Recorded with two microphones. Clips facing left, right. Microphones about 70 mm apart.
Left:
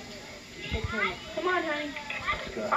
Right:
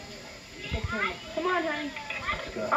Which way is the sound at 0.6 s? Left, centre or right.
Left.